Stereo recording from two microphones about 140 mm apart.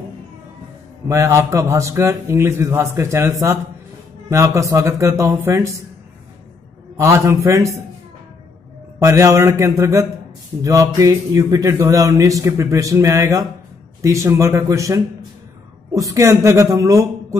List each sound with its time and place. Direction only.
1.0 s speech: 20° right (ahead or behind)
7.0 s speech: 20° right (ahead or behind)
9.0 s speech: 20° right (ahead or behind)